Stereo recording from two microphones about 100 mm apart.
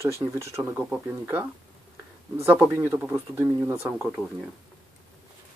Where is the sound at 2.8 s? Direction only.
25° right (ahead or behind).